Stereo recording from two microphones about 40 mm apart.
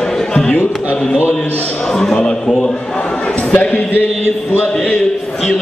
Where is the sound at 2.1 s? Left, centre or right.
Left.